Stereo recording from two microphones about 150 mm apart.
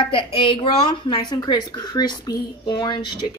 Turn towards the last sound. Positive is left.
turn(degrees=30)  # may be behind; listen again after turning